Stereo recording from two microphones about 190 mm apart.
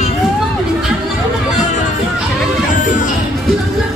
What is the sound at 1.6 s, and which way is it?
Music, 40° left (ahead or behind).